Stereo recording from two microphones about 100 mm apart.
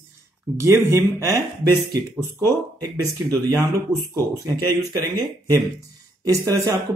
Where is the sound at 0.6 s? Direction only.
30° right (ahead or behind).